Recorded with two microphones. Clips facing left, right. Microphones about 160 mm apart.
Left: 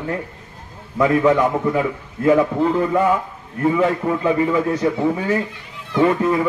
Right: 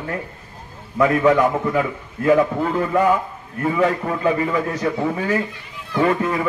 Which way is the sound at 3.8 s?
20° left (ahead or behind).